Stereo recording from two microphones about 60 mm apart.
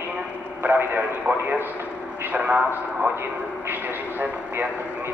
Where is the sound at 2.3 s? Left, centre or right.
Right.